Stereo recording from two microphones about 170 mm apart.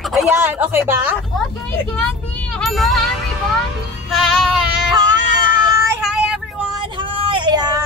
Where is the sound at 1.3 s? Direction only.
5° left (ahead or behind).